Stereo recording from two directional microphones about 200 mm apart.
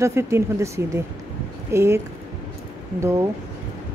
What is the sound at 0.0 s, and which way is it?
Speech, 15° right (ahead or behind).